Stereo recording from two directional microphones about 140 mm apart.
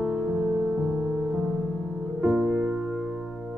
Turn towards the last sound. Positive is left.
turn(degrees=-5)  # may be behind; listen again after turning